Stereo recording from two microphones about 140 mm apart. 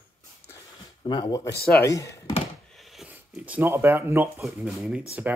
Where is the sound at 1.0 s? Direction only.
35° left (ahead or behind).